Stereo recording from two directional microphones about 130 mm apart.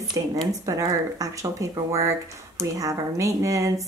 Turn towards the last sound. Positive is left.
turn(degrees=-25)  # may be behind; listen again after turning